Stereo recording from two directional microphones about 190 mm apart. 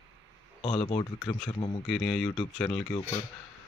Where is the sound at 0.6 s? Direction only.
30° left (ahead or behind).